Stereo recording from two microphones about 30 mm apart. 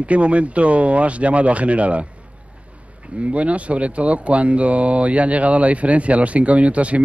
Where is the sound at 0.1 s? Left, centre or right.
Right.